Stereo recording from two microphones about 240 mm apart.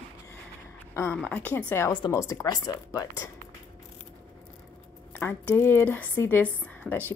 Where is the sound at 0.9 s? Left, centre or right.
Centre.